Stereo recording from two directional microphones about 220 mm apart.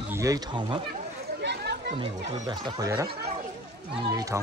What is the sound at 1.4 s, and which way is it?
Chatter, 50° right (ahead or behind).